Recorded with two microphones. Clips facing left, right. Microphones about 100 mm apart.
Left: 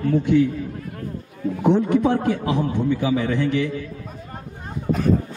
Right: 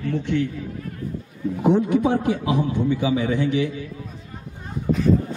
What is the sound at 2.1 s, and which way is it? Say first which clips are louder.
A man's voice: even; 50° left (ahead or behind).